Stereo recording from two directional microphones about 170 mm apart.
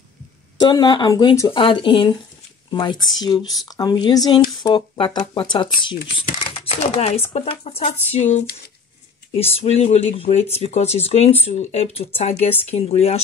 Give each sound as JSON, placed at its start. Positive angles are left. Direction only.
{"t": 0.6, "sound": "speech", "side_deg": 25}